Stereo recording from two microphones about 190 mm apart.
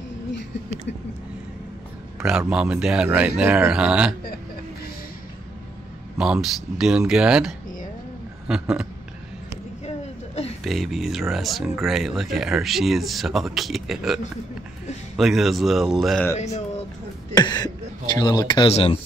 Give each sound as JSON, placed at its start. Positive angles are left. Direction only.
{"t": 2.1, "sound": "speech", "side_deg": -5}
{"t": 6.1, "sound": "speech", "side_deg": -5}
{"t": 10.6, "sound": "speech", "side_deg": 0}
{"t": 17.4, "sound": "speech", "side_deg": 20}